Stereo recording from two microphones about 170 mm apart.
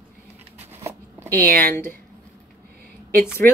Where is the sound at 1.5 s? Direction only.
60° right (ahead or behind).